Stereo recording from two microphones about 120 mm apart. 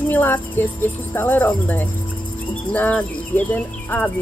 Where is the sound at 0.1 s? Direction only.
15° left (ahead or behind).